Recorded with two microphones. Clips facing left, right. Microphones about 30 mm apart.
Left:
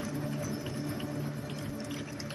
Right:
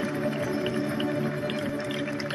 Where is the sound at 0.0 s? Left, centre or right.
Right.